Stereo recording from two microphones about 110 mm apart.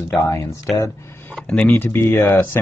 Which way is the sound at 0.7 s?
Centre (ahead or behind).